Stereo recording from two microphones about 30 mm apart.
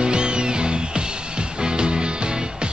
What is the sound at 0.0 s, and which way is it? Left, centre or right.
Music, right.